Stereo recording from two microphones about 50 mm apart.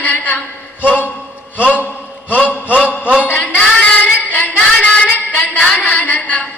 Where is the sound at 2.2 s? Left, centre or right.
Left.